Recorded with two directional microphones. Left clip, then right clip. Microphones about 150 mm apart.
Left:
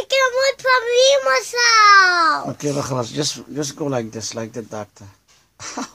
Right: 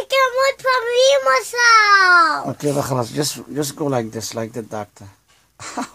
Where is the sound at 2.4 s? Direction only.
30° right (ahead or behind).